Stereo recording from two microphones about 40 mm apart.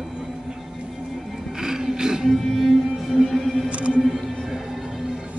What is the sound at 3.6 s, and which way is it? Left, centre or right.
Music, right.